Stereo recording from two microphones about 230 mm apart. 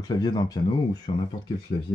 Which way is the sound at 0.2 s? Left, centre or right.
Centre.